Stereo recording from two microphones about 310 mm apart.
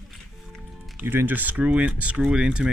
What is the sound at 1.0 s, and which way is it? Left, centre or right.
Speech, centre.